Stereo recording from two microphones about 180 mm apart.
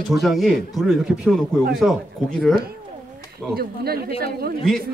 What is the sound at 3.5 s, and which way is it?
Speech, 60° right (ahead or behind).